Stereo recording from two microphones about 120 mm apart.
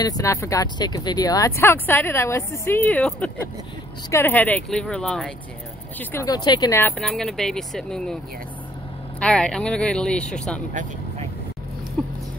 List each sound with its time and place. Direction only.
0.0 s speech: 30° left (ahead or behind); by 5.3 s 5° left (ahead or behind)
6.2 s speech: 35° left (ahead or behind)
6.7 s speech: 15° left (ahead or behind)
7.1 s speech: 5° left (ahead or behind)
9.2 s speech: 5° left (ahead or behind)
10.7 s speech: 90° right
12.0 s dog: 5° left (ahead or behind)